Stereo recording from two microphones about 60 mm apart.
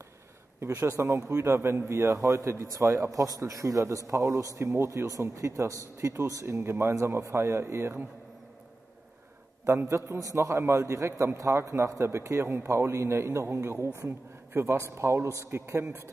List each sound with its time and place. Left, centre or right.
0.7 s a man's voice: right
3.1 s speech: right
4.6 s speech: right
6.4 s a man's voice: right
9.7 s a man's voice: right
10.4 s a man's voice: right